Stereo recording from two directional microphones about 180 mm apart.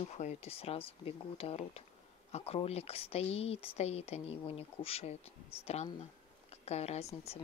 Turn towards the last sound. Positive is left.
turn(degrees=35)  # may be behind; listen again after turning